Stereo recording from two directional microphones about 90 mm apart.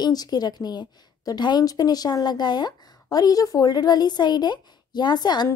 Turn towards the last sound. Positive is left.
turn(degrees=50)  # may be behind; listen again after turning